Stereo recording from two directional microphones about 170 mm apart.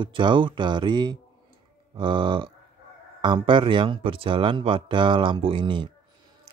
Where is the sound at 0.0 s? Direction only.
30° right (ahead or behind).